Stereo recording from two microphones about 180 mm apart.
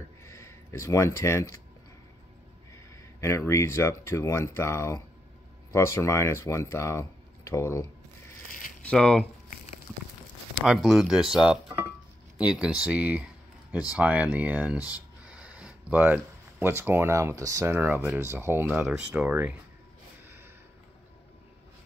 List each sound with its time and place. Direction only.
0.2 s a sound: 15° left (ahead or behind)
2.7 s speech: 15° left (ahead or behind)
8.8 s speech: 5° left (ahead or behind)
10.6 s speech: centre (ahead or behind)